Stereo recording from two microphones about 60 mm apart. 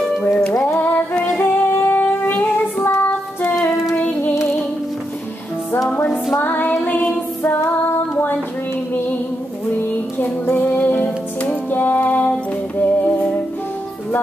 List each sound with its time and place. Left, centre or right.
0.2 s music: centre
0.7 s music: left
3.9 s music: left
6.3 s music: left
6.7 s music: centre
8.9 s music: left
9.8 s a sound: left
10.5 s music: left